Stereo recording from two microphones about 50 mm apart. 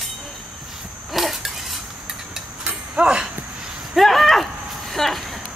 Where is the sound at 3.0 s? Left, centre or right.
Centre.